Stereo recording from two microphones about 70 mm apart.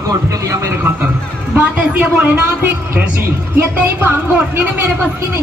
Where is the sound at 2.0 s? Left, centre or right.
Right.